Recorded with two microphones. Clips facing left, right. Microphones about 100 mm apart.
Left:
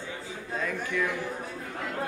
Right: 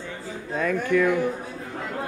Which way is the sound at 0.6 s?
55° right (ahead or behind).